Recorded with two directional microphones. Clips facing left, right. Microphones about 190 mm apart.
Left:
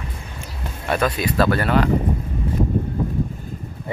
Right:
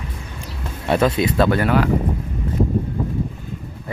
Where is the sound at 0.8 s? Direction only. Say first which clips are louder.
Right 4 dB; 25° right (ahead or behind).